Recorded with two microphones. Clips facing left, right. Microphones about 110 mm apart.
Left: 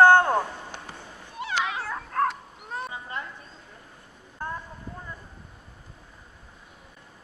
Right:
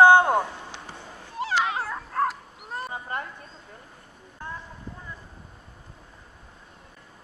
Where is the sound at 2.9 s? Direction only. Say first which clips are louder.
Right 3 dB; 50° right (ahead or behind).